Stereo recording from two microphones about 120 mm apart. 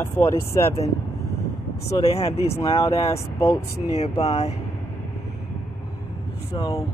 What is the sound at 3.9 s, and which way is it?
Speech, 65° left (ahead or behind).